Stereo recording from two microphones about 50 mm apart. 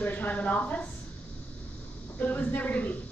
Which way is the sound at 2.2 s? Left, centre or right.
Left.